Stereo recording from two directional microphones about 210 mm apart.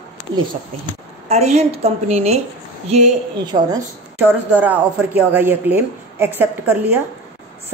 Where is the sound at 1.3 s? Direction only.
30° right (ahead or behind).